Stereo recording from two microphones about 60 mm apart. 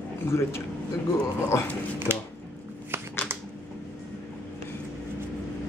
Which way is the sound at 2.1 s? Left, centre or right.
Right.